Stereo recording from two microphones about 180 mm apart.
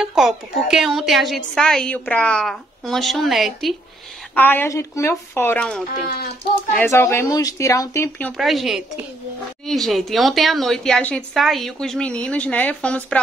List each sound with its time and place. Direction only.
0.0 s a woman's voice: centre (ahead or behind)
4.4 s speech: 10° left (ahead or behind)
8.3 s a woman's voice: centre (ahead or behind)